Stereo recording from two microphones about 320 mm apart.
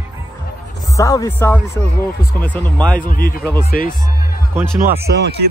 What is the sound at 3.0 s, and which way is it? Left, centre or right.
Speech, left.